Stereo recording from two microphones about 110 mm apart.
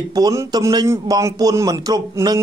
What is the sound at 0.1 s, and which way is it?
A man's voice, 35° right (ahead or behind).